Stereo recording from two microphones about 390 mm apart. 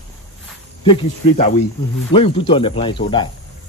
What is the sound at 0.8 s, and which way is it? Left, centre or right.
Speech, centre.